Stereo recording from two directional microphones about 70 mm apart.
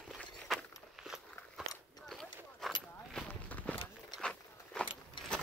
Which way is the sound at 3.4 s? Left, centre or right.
Left.